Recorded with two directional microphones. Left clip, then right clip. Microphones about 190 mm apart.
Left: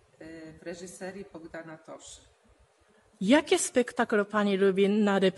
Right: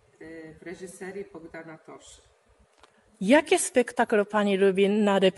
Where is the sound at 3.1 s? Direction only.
Centre (ahead or behind).